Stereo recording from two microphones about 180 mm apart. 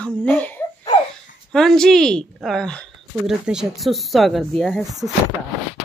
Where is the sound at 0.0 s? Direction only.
5° left (ahead or behind).